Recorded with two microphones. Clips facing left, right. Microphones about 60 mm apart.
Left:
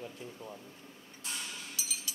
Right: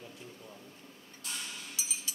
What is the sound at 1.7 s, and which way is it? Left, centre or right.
Chink, right.